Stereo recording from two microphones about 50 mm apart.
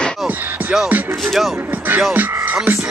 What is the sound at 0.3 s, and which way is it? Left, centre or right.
Music, right.